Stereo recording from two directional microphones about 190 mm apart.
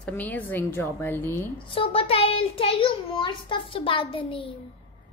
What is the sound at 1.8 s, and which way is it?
A child's voice, 30° left (ahead or behind).